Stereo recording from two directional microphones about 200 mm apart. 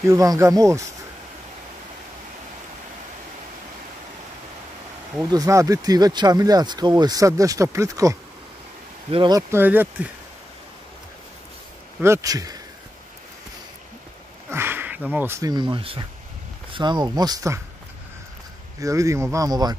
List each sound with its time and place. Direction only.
0.1 s speech: 15° right (ahead or behind)
5.1 s speech: 15° right (ahead or behind)
9.5 s speech: 10° right (ahead or behind)
12.0 s speech: 15° right (ahead or behind)
14.5 s sniff: 10° right (ahead or behind)
15.0 s speech: 10° right (ahead or behind)
18.8 s speech: 15° right (ahead or behind)